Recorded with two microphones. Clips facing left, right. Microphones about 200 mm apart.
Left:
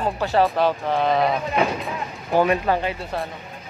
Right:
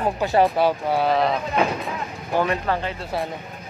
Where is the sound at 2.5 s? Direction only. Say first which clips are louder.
Left 3 dB; 15° left (ahead or behind).